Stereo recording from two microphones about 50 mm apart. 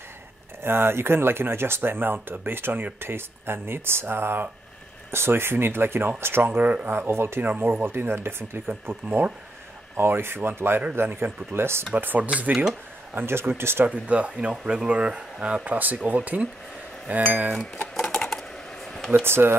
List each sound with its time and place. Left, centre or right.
0.7 s speech: right
6.5 s speech: right
6.9 s speech: right
7.4 s speech: right
11.9 s speech: right
13.1 s speech: right
13.8 s speech: right
14.5 s speech: centre
14.9 s speech: right
15.6 s speech: right
17.9 s typing: centre
19.2 s speech: right